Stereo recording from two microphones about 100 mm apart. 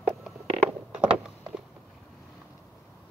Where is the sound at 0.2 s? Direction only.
10° right (ahead or behind).